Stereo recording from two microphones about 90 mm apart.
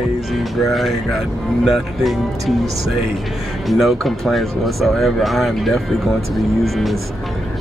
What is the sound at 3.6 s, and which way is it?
A man's voice, centre (ahead or behind).